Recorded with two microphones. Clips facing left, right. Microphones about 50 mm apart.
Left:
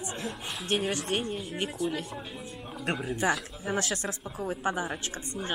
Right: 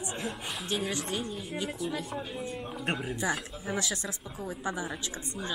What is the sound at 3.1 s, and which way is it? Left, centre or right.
A woman's voice, left.